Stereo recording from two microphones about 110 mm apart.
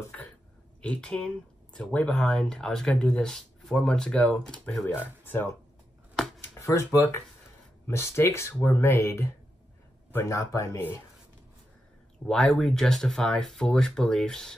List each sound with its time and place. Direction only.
0.8 s speech: 10° left (ahead or behind)
5.2 s speech: 20° left (ahead or behind)
6.1 s chopping: centre (ahead or behind)
6.6 s speech: 25° left (ahead or behind)
12.3 s speech: 5° left (ahead or behind)